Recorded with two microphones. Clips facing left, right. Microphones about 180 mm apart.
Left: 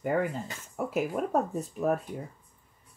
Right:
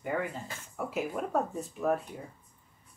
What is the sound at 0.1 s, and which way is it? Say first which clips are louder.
Speech: left 4 dB; 40° left (ahead or behind).